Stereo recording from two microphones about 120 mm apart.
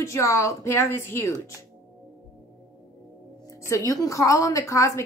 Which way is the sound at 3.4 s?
25° left (ahead or behind).